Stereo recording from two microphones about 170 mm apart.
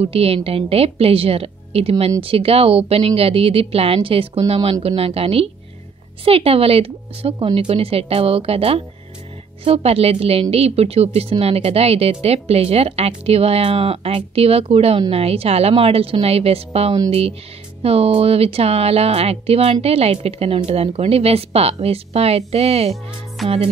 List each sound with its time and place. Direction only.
0.0 s speech: 35° right (ahead or behind)
23.4 s music: centre (ahead or behind)